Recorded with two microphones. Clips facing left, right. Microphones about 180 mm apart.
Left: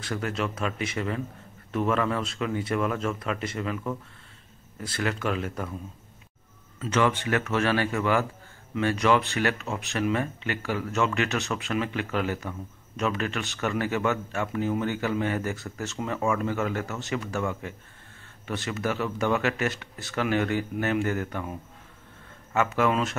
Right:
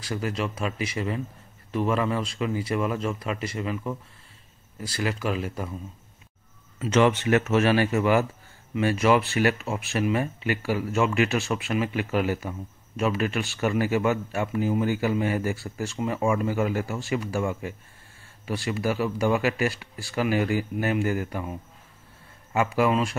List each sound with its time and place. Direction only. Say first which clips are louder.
0.1 s speech: right 1 dB; 5° right (ahead or behind)
6.9 s speech: right 4 dB; 20° right (ahead or behind)